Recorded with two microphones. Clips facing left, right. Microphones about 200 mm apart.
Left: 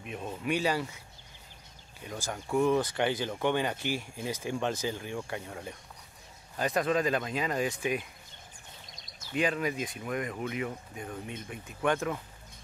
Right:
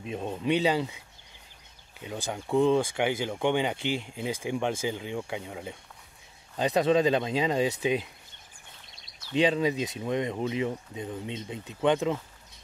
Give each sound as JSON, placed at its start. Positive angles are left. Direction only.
{"t": 0.0, "sound": "speech", "side_deg": -25}
{"t": 2.0, "sound": "speech", "side_deg": -15}
{"t": 6.5, "sound": "speech", "side_deg": -25}
{"t": 9.3, "sound": "speech", "side_deg": -25}